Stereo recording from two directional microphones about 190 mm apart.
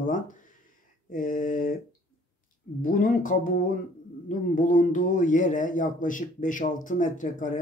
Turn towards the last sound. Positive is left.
turn(degrees=45)  # may be behind; listen again after turning